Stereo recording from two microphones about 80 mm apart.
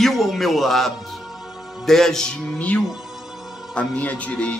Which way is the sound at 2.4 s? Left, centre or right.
Centre.